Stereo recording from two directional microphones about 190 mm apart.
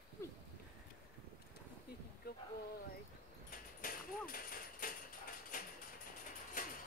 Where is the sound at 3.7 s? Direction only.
50° left (ahead or behind).